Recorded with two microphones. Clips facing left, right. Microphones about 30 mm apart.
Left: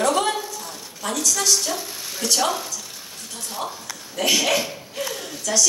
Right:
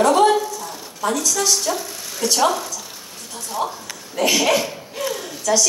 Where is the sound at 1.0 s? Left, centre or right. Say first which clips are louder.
Right 3 dB; centre.